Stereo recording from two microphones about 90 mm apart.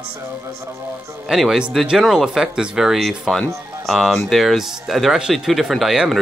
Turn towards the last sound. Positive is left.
turn(degrees=0)  # may be behind; listen again after turning